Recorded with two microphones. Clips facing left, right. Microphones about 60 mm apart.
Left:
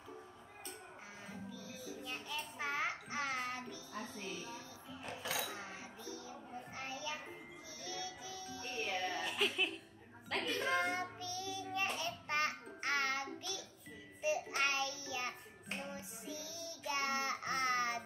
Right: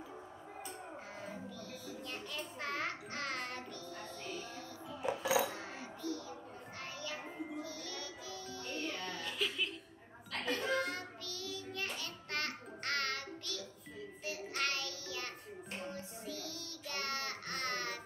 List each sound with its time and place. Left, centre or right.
1.7 s child singing: centre
5.0 s coin: centre
5.5 s a sound: centre
6.8 s music: centre
10.6 s child singing: centre